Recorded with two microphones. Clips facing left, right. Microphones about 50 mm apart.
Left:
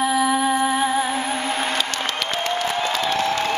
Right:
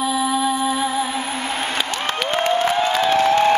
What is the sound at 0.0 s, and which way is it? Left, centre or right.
Music, left.